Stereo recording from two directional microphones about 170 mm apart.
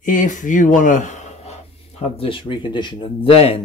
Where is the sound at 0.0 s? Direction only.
50° left (ahead or behind).